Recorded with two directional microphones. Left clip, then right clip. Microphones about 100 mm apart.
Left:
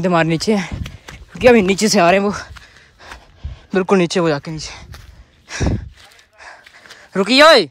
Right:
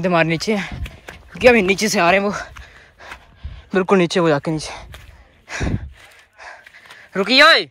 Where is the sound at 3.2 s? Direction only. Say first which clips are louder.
Left 2 dB; 65° left (ahead or behind).